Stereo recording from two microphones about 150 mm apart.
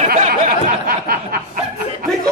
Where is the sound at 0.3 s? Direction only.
80° right.